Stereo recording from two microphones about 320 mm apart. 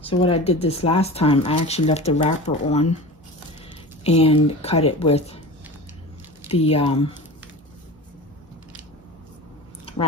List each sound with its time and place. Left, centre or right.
0.0 s speech: centre
4.0 s speech: centre
6.5 s speech: centre